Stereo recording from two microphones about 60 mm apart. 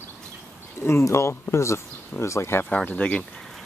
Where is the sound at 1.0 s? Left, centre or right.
Left.